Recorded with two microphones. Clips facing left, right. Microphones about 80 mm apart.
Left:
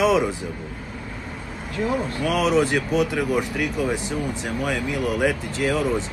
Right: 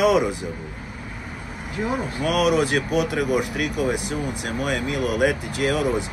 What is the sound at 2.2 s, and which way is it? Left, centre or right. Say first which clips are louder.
Speech: right 1 dB; centre.